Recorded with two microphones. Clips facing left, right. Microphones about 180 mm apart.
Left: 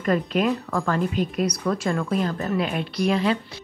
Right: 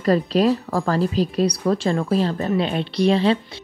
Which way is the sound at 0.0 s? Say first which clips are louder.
Right 4 dB; 35° right (ahead or behind).